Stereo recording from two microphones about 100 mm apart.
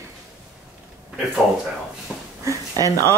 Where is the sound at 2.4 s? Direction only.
30° right (ahead or behind).